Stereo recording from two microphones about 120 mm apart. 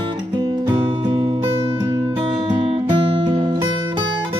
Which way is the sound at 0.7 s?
40° right (ahead or behind).